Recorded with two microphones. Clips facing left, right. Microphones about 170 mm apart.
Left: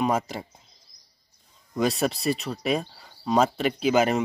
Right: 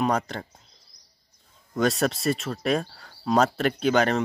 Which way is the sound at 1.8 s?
Centre (ahead or behind).